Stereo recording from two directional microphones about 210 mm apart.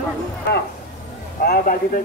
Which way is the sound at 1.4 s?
45° left (ahead or behind).